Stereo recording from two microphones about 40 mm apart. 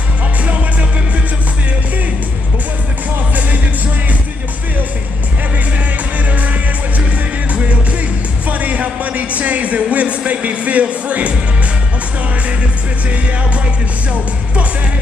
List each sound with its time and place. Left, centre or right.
6.3 s music: right
8.5 s music: right
9.4 s a sound: right
14.1 s music: right